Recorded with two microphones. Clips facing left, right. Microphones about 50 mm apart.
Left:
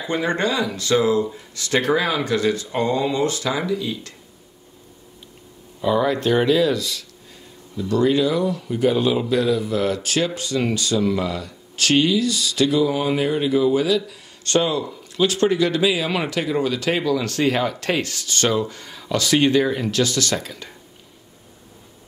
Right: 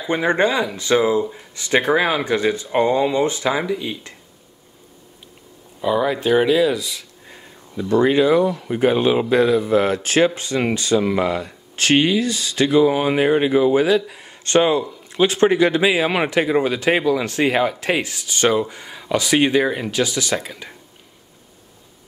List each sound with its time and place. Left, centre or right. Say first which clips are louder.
0.0 s speech: right 4 dB; right
5.8 s speech: even; centre
7.9 s speech: right 4 dB; right